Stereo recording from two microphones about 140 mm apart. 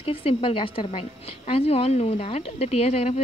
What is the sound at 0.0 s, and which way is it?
A woman's voice, 40° left (ahead or behind).